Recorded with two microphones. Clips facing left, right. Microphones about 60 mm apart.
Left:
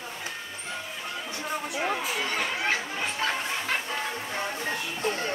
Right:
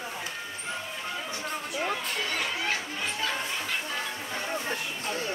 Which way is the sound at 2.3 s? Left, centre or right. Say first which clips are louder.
Left 4 dB; left.